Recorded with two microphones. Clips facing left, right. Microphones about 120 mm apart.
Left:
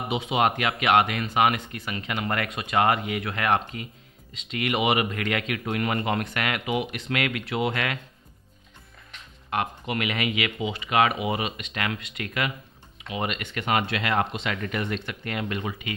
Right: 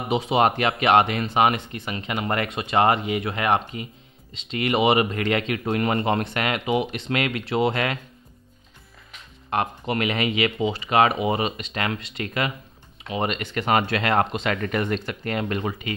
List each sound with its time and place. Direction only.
0.1 s speech: 35° right (ahead or behind)
9.5 s speech: 35° right (ahead or behind)